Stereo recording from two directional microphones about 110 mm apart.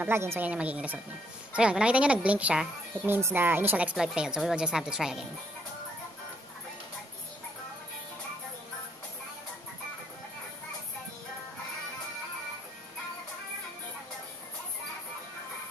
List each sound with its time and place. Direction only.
0.0 s a woman's voice: 20° right (ahead or behind)
0.5 s a woman's voice: 10° right (ahead or behind)
3.1 s a woman's voice: 20° right (ahead or behind); by 5.2 s 5° right (ahead or behind)